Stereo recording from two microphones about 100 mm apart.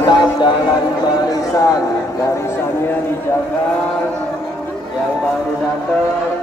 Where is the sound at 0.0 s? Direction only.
50° left (ahead or behind).